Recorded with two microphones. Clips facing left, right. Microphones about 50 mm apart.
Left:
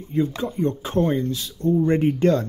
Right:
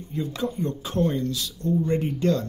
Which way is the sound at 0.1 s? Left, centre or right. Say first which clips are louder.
Left 5 dB; left.